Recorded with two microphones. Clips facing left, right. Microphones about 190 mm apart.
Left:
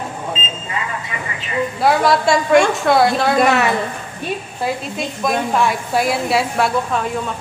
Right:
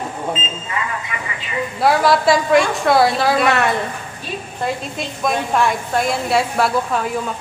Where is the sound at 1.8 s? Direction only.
Centre (ahead or behind).